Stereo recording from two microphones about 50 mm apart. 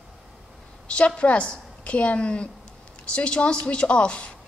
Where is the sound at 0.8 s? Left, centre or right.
Left.